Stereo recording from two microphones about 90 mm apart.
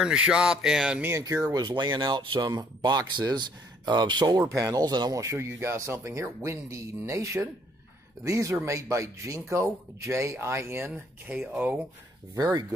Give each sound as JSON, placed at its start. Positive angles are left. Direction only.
{"t": 0.0, "sound": "speech", "side_deg": -10}
{"t": 1.5, "sound": "speech", "side_deg": -55}
{"t": 2.5, "sound": "speech", "side_deg": -50}
{"t": 4.4, "sound": "speech", "side_deg": -35}
{"t": 5.2, "sound": "speech", "side_deg": -30}
{"t": 11.2, "sound": "speech", "side_deg": -15}
{"t": 12.4, "sound": "speech", "side_deg": -45}